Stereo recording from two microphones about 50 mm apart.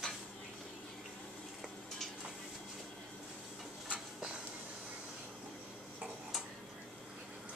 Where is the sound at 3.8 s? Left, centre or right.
Centre.